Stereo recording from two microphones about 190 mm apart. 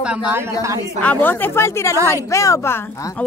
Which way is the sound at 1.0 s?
10° left (ahead or behind).